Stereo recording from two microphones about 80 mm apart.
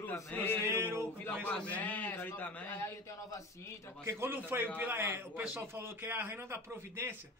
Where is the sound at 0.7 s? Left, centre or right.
Right.